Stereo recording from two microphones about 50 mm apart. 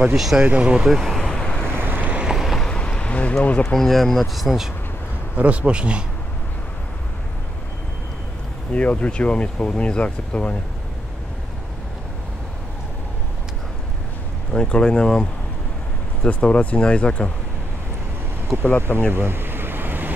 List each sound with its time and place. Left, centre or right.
0.1 s speech: centre
0.4 s speech: right
0.8 s speech: centre
1.2 s vehicle: centre
1.7 s boat: right
2.2 s boat: centre
2.6 s a sound: centre
3.7 s speech: centre
5.3 s speech: right
8.7 s speech: left
14.5 s speech: centre
18.8 s speech: left
19.1 s a sound: right